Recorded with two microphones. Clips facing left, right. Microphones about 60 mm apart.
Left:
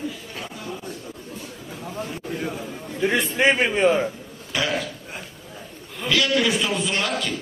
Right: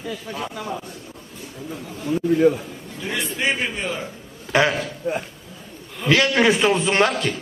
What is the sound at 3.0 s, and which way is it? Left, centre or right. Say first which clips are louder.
A man's voice: left 5 dB; left.